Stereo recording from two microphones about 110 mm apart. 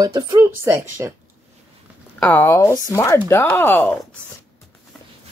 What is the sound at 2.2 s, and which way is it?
Speech, 20° left (ahead or behind).